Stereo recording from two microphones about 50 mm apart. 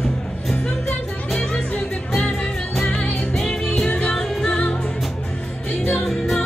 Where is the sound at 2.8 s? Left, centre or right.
Left.